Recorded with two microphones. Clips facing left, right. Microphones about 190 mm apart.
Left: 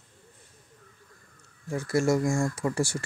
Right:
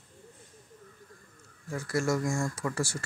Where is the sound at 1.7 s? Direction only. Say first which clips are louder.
Left 5 dB; 30° left (ahead or behind).